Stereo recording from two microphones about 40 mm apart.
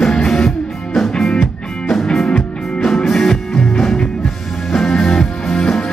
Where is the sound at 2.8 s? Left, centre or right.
Centre.